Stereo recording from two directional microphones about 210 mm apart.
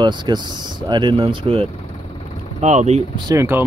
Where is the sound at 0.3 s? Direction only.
20° right (ahead or behind).